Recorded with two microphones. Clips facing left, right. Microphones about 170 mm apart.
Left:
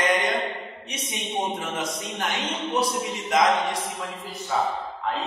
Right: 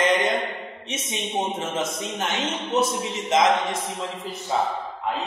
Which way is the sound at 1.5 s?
25° right (ahead or behind).